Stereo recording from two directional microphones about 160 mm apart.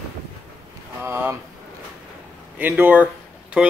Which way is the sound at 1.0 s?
15° right (ahead or behind).